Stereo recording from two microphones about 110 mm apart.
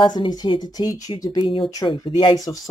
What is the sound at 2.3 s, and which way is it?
Speech, 35° left (ahead or behind).